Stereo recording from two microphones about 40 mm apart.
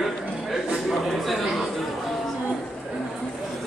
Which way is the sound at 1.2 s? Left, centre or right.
Centre.